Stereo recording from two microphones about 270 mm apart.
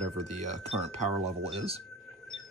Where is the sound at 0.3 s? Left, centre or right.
Right.